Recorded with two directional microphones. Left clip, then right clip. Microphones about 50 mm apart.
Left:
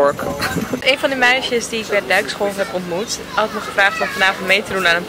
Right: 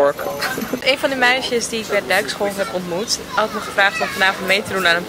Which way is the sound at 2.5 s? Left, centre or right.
Right.